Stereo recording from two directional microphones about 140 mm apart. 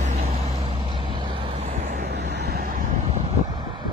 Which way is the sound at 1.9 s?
75° right (ahead or behind).